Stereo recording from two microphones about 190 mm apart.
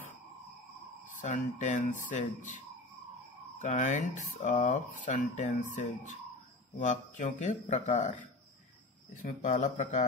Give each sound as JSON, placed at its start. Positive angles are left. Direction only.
{"t": 1.2, "sound": "speech", "side_deg": 40}